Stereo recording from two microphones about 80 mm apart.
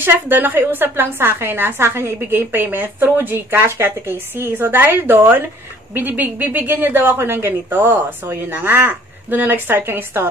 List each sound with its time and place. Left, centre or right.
0.0 s a woman's voice: right